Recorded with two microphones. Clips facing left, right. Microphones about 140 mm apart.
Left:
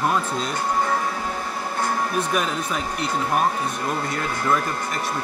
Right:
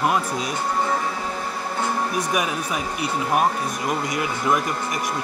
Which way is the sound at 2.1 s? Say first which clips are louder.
Even; 10° right (ahead or behind).